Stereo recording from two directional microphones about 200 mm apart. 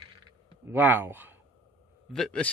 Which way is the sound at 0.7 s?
10° right (ahead or behind).